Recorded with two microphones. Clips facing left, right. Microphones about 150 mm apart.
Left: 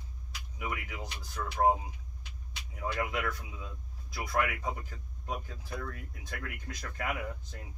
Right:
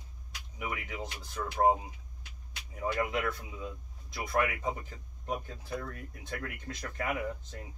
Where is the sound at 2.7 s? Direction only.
25° right (ahead or behind).